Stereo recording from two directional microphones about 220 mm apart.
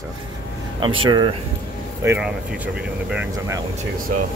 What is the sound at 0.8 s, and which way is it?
Speech, 20° right (ahead or behind).